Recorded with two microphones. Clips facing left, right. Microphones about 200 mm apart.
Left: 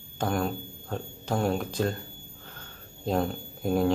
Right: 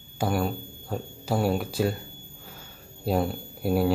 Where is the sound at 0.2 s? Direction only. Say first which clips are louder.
Right 2 dB; 5° right (ahead or behind).